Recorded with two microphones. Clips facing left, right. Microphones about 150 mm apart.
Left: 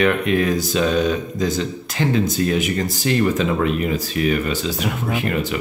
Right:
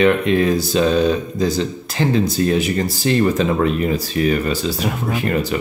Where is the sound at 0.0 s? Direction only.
25° right (ahead or behind).